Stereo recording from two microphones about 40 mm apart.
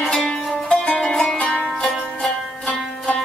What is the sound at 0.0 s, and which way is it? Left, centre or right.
Music, left.